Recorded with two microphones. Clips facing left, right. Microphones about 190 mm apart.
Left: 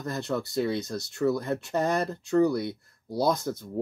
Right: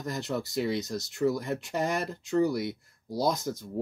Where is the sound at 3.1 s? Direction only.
60° left (ahead or behind).